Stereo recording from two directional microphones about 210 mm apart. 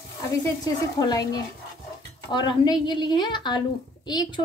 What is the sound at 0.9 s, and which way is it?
A woman's voice, 20° left (ahead or behind).